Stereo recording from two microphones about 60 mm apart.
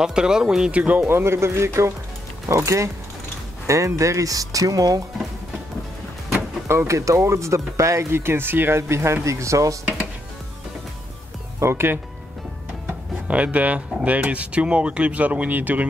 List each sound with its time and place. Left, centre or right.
0.0 s speech: centre
1.0 s speech: right
2.6 s speech: right
6.3 s vehicle: right
6.9 s speech: right
11.6 s speech: right
12.8 s speech: right